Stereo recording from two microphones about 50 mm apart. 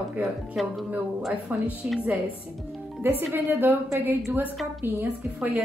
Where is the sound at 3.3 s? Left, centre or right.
Right.